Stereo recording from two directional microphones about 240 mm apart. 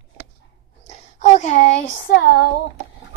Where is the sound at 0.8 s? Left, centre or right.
Left.